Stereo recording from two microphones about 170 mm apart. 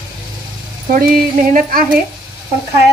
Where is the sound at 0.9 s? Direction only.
55° right (ahead or behind).